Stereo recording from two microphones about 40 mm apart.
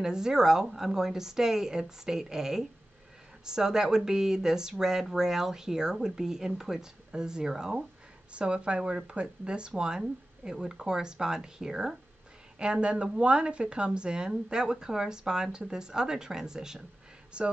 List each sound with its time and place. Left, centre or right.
0.0 s speech: centre
8.3 s a woman's voice: right
17.3 s speech: right